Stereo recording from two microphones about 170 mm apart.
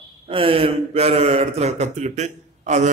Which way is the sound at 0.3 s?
30° right (ahead or behind).